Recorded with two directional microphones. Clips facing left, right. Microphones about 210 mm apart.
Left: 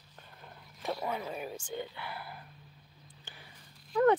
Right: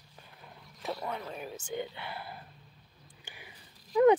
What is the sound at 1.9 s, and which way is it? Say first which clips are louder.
Speech: right 1 dB; 25° right (ahead or behind).